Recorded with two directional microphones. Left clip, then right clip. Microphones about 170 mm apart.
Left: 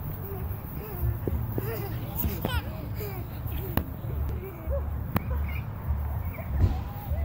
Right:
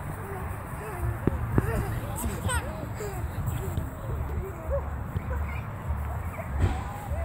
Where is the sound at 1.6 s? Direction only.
50° right (ahead or behind).